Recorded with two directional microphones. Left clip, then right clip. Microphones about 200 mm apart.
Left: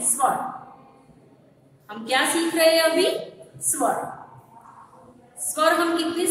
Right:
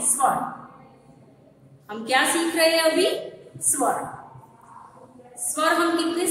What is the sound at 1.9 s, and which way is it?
A woman's voice, centre (ahead or behind).